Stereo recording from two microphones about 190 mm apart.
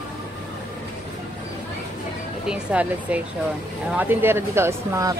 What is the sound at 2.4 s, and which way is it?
Speech, 5° right (ahead or behind).